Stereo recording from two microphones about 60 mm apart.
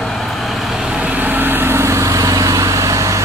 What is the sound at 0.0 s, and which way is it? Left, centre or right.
Vehicle, centre.